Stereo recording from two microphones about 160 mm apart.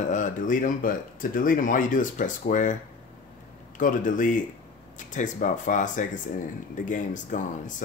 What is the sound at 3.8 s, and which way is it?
Speech, 55° left (ahead or behind).